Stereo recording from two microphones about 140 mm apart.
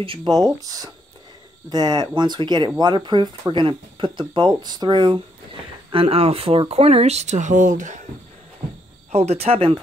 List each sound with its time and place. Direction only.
0.0 s speech: 35° right (ahead or behind); by 8.0 s 65° right (ahead or behind)
9.1 s speech: 50° right (ahead or behind)